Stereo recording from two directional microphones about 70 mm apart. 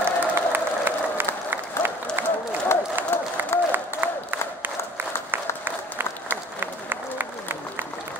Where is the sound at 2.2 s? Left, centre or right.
Right.